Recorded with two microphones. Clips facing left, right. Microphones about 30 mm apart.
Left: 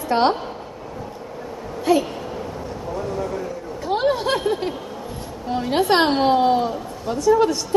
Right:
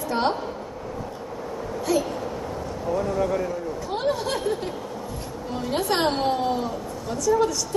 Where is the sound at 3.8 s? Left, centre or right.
Left.